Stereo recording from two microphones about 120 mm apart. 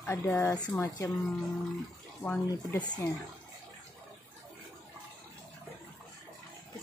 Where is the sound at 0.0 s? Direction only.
20° left (ahead or behind).